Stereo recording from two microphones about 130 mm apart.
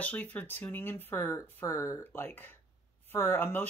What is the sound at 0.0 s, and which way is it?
Speech, 10° left (ahead or behind).